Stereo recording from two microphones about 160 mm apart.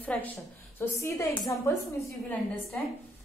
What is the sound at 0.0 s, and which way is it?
A woman's voice, 10° left (ahead or behind).